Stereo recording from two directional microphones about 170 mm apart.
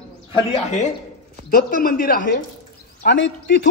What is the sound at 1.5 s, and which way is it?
Speech, 60° left (ahead or behind).